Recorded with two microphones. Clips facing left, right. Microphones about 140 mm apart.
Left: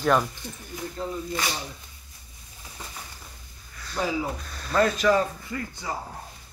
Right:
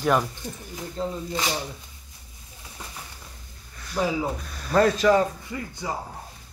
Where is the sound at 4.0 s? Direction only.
5° right (ahead or behind).